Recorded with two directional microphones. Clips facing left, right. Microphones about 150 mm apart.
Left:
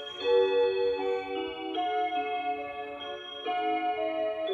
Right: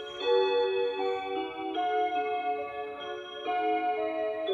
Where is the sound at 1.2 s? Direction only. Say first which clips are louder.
Right 1 dB; 30° right (ahead or behind).